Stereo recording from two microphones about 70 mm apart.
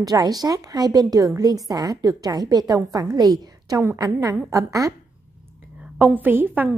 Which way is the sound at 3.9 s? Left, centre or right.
Right.